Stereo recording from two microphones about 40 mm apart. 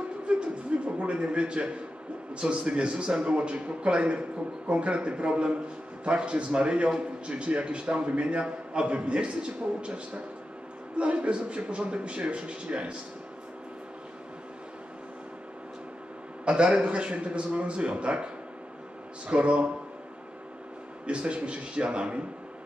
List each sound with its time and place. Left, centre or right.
0.3 s a sound: right
2.3 s a man's voice: right
16.4 s a man's voice: right
21.1 s a man's voice: right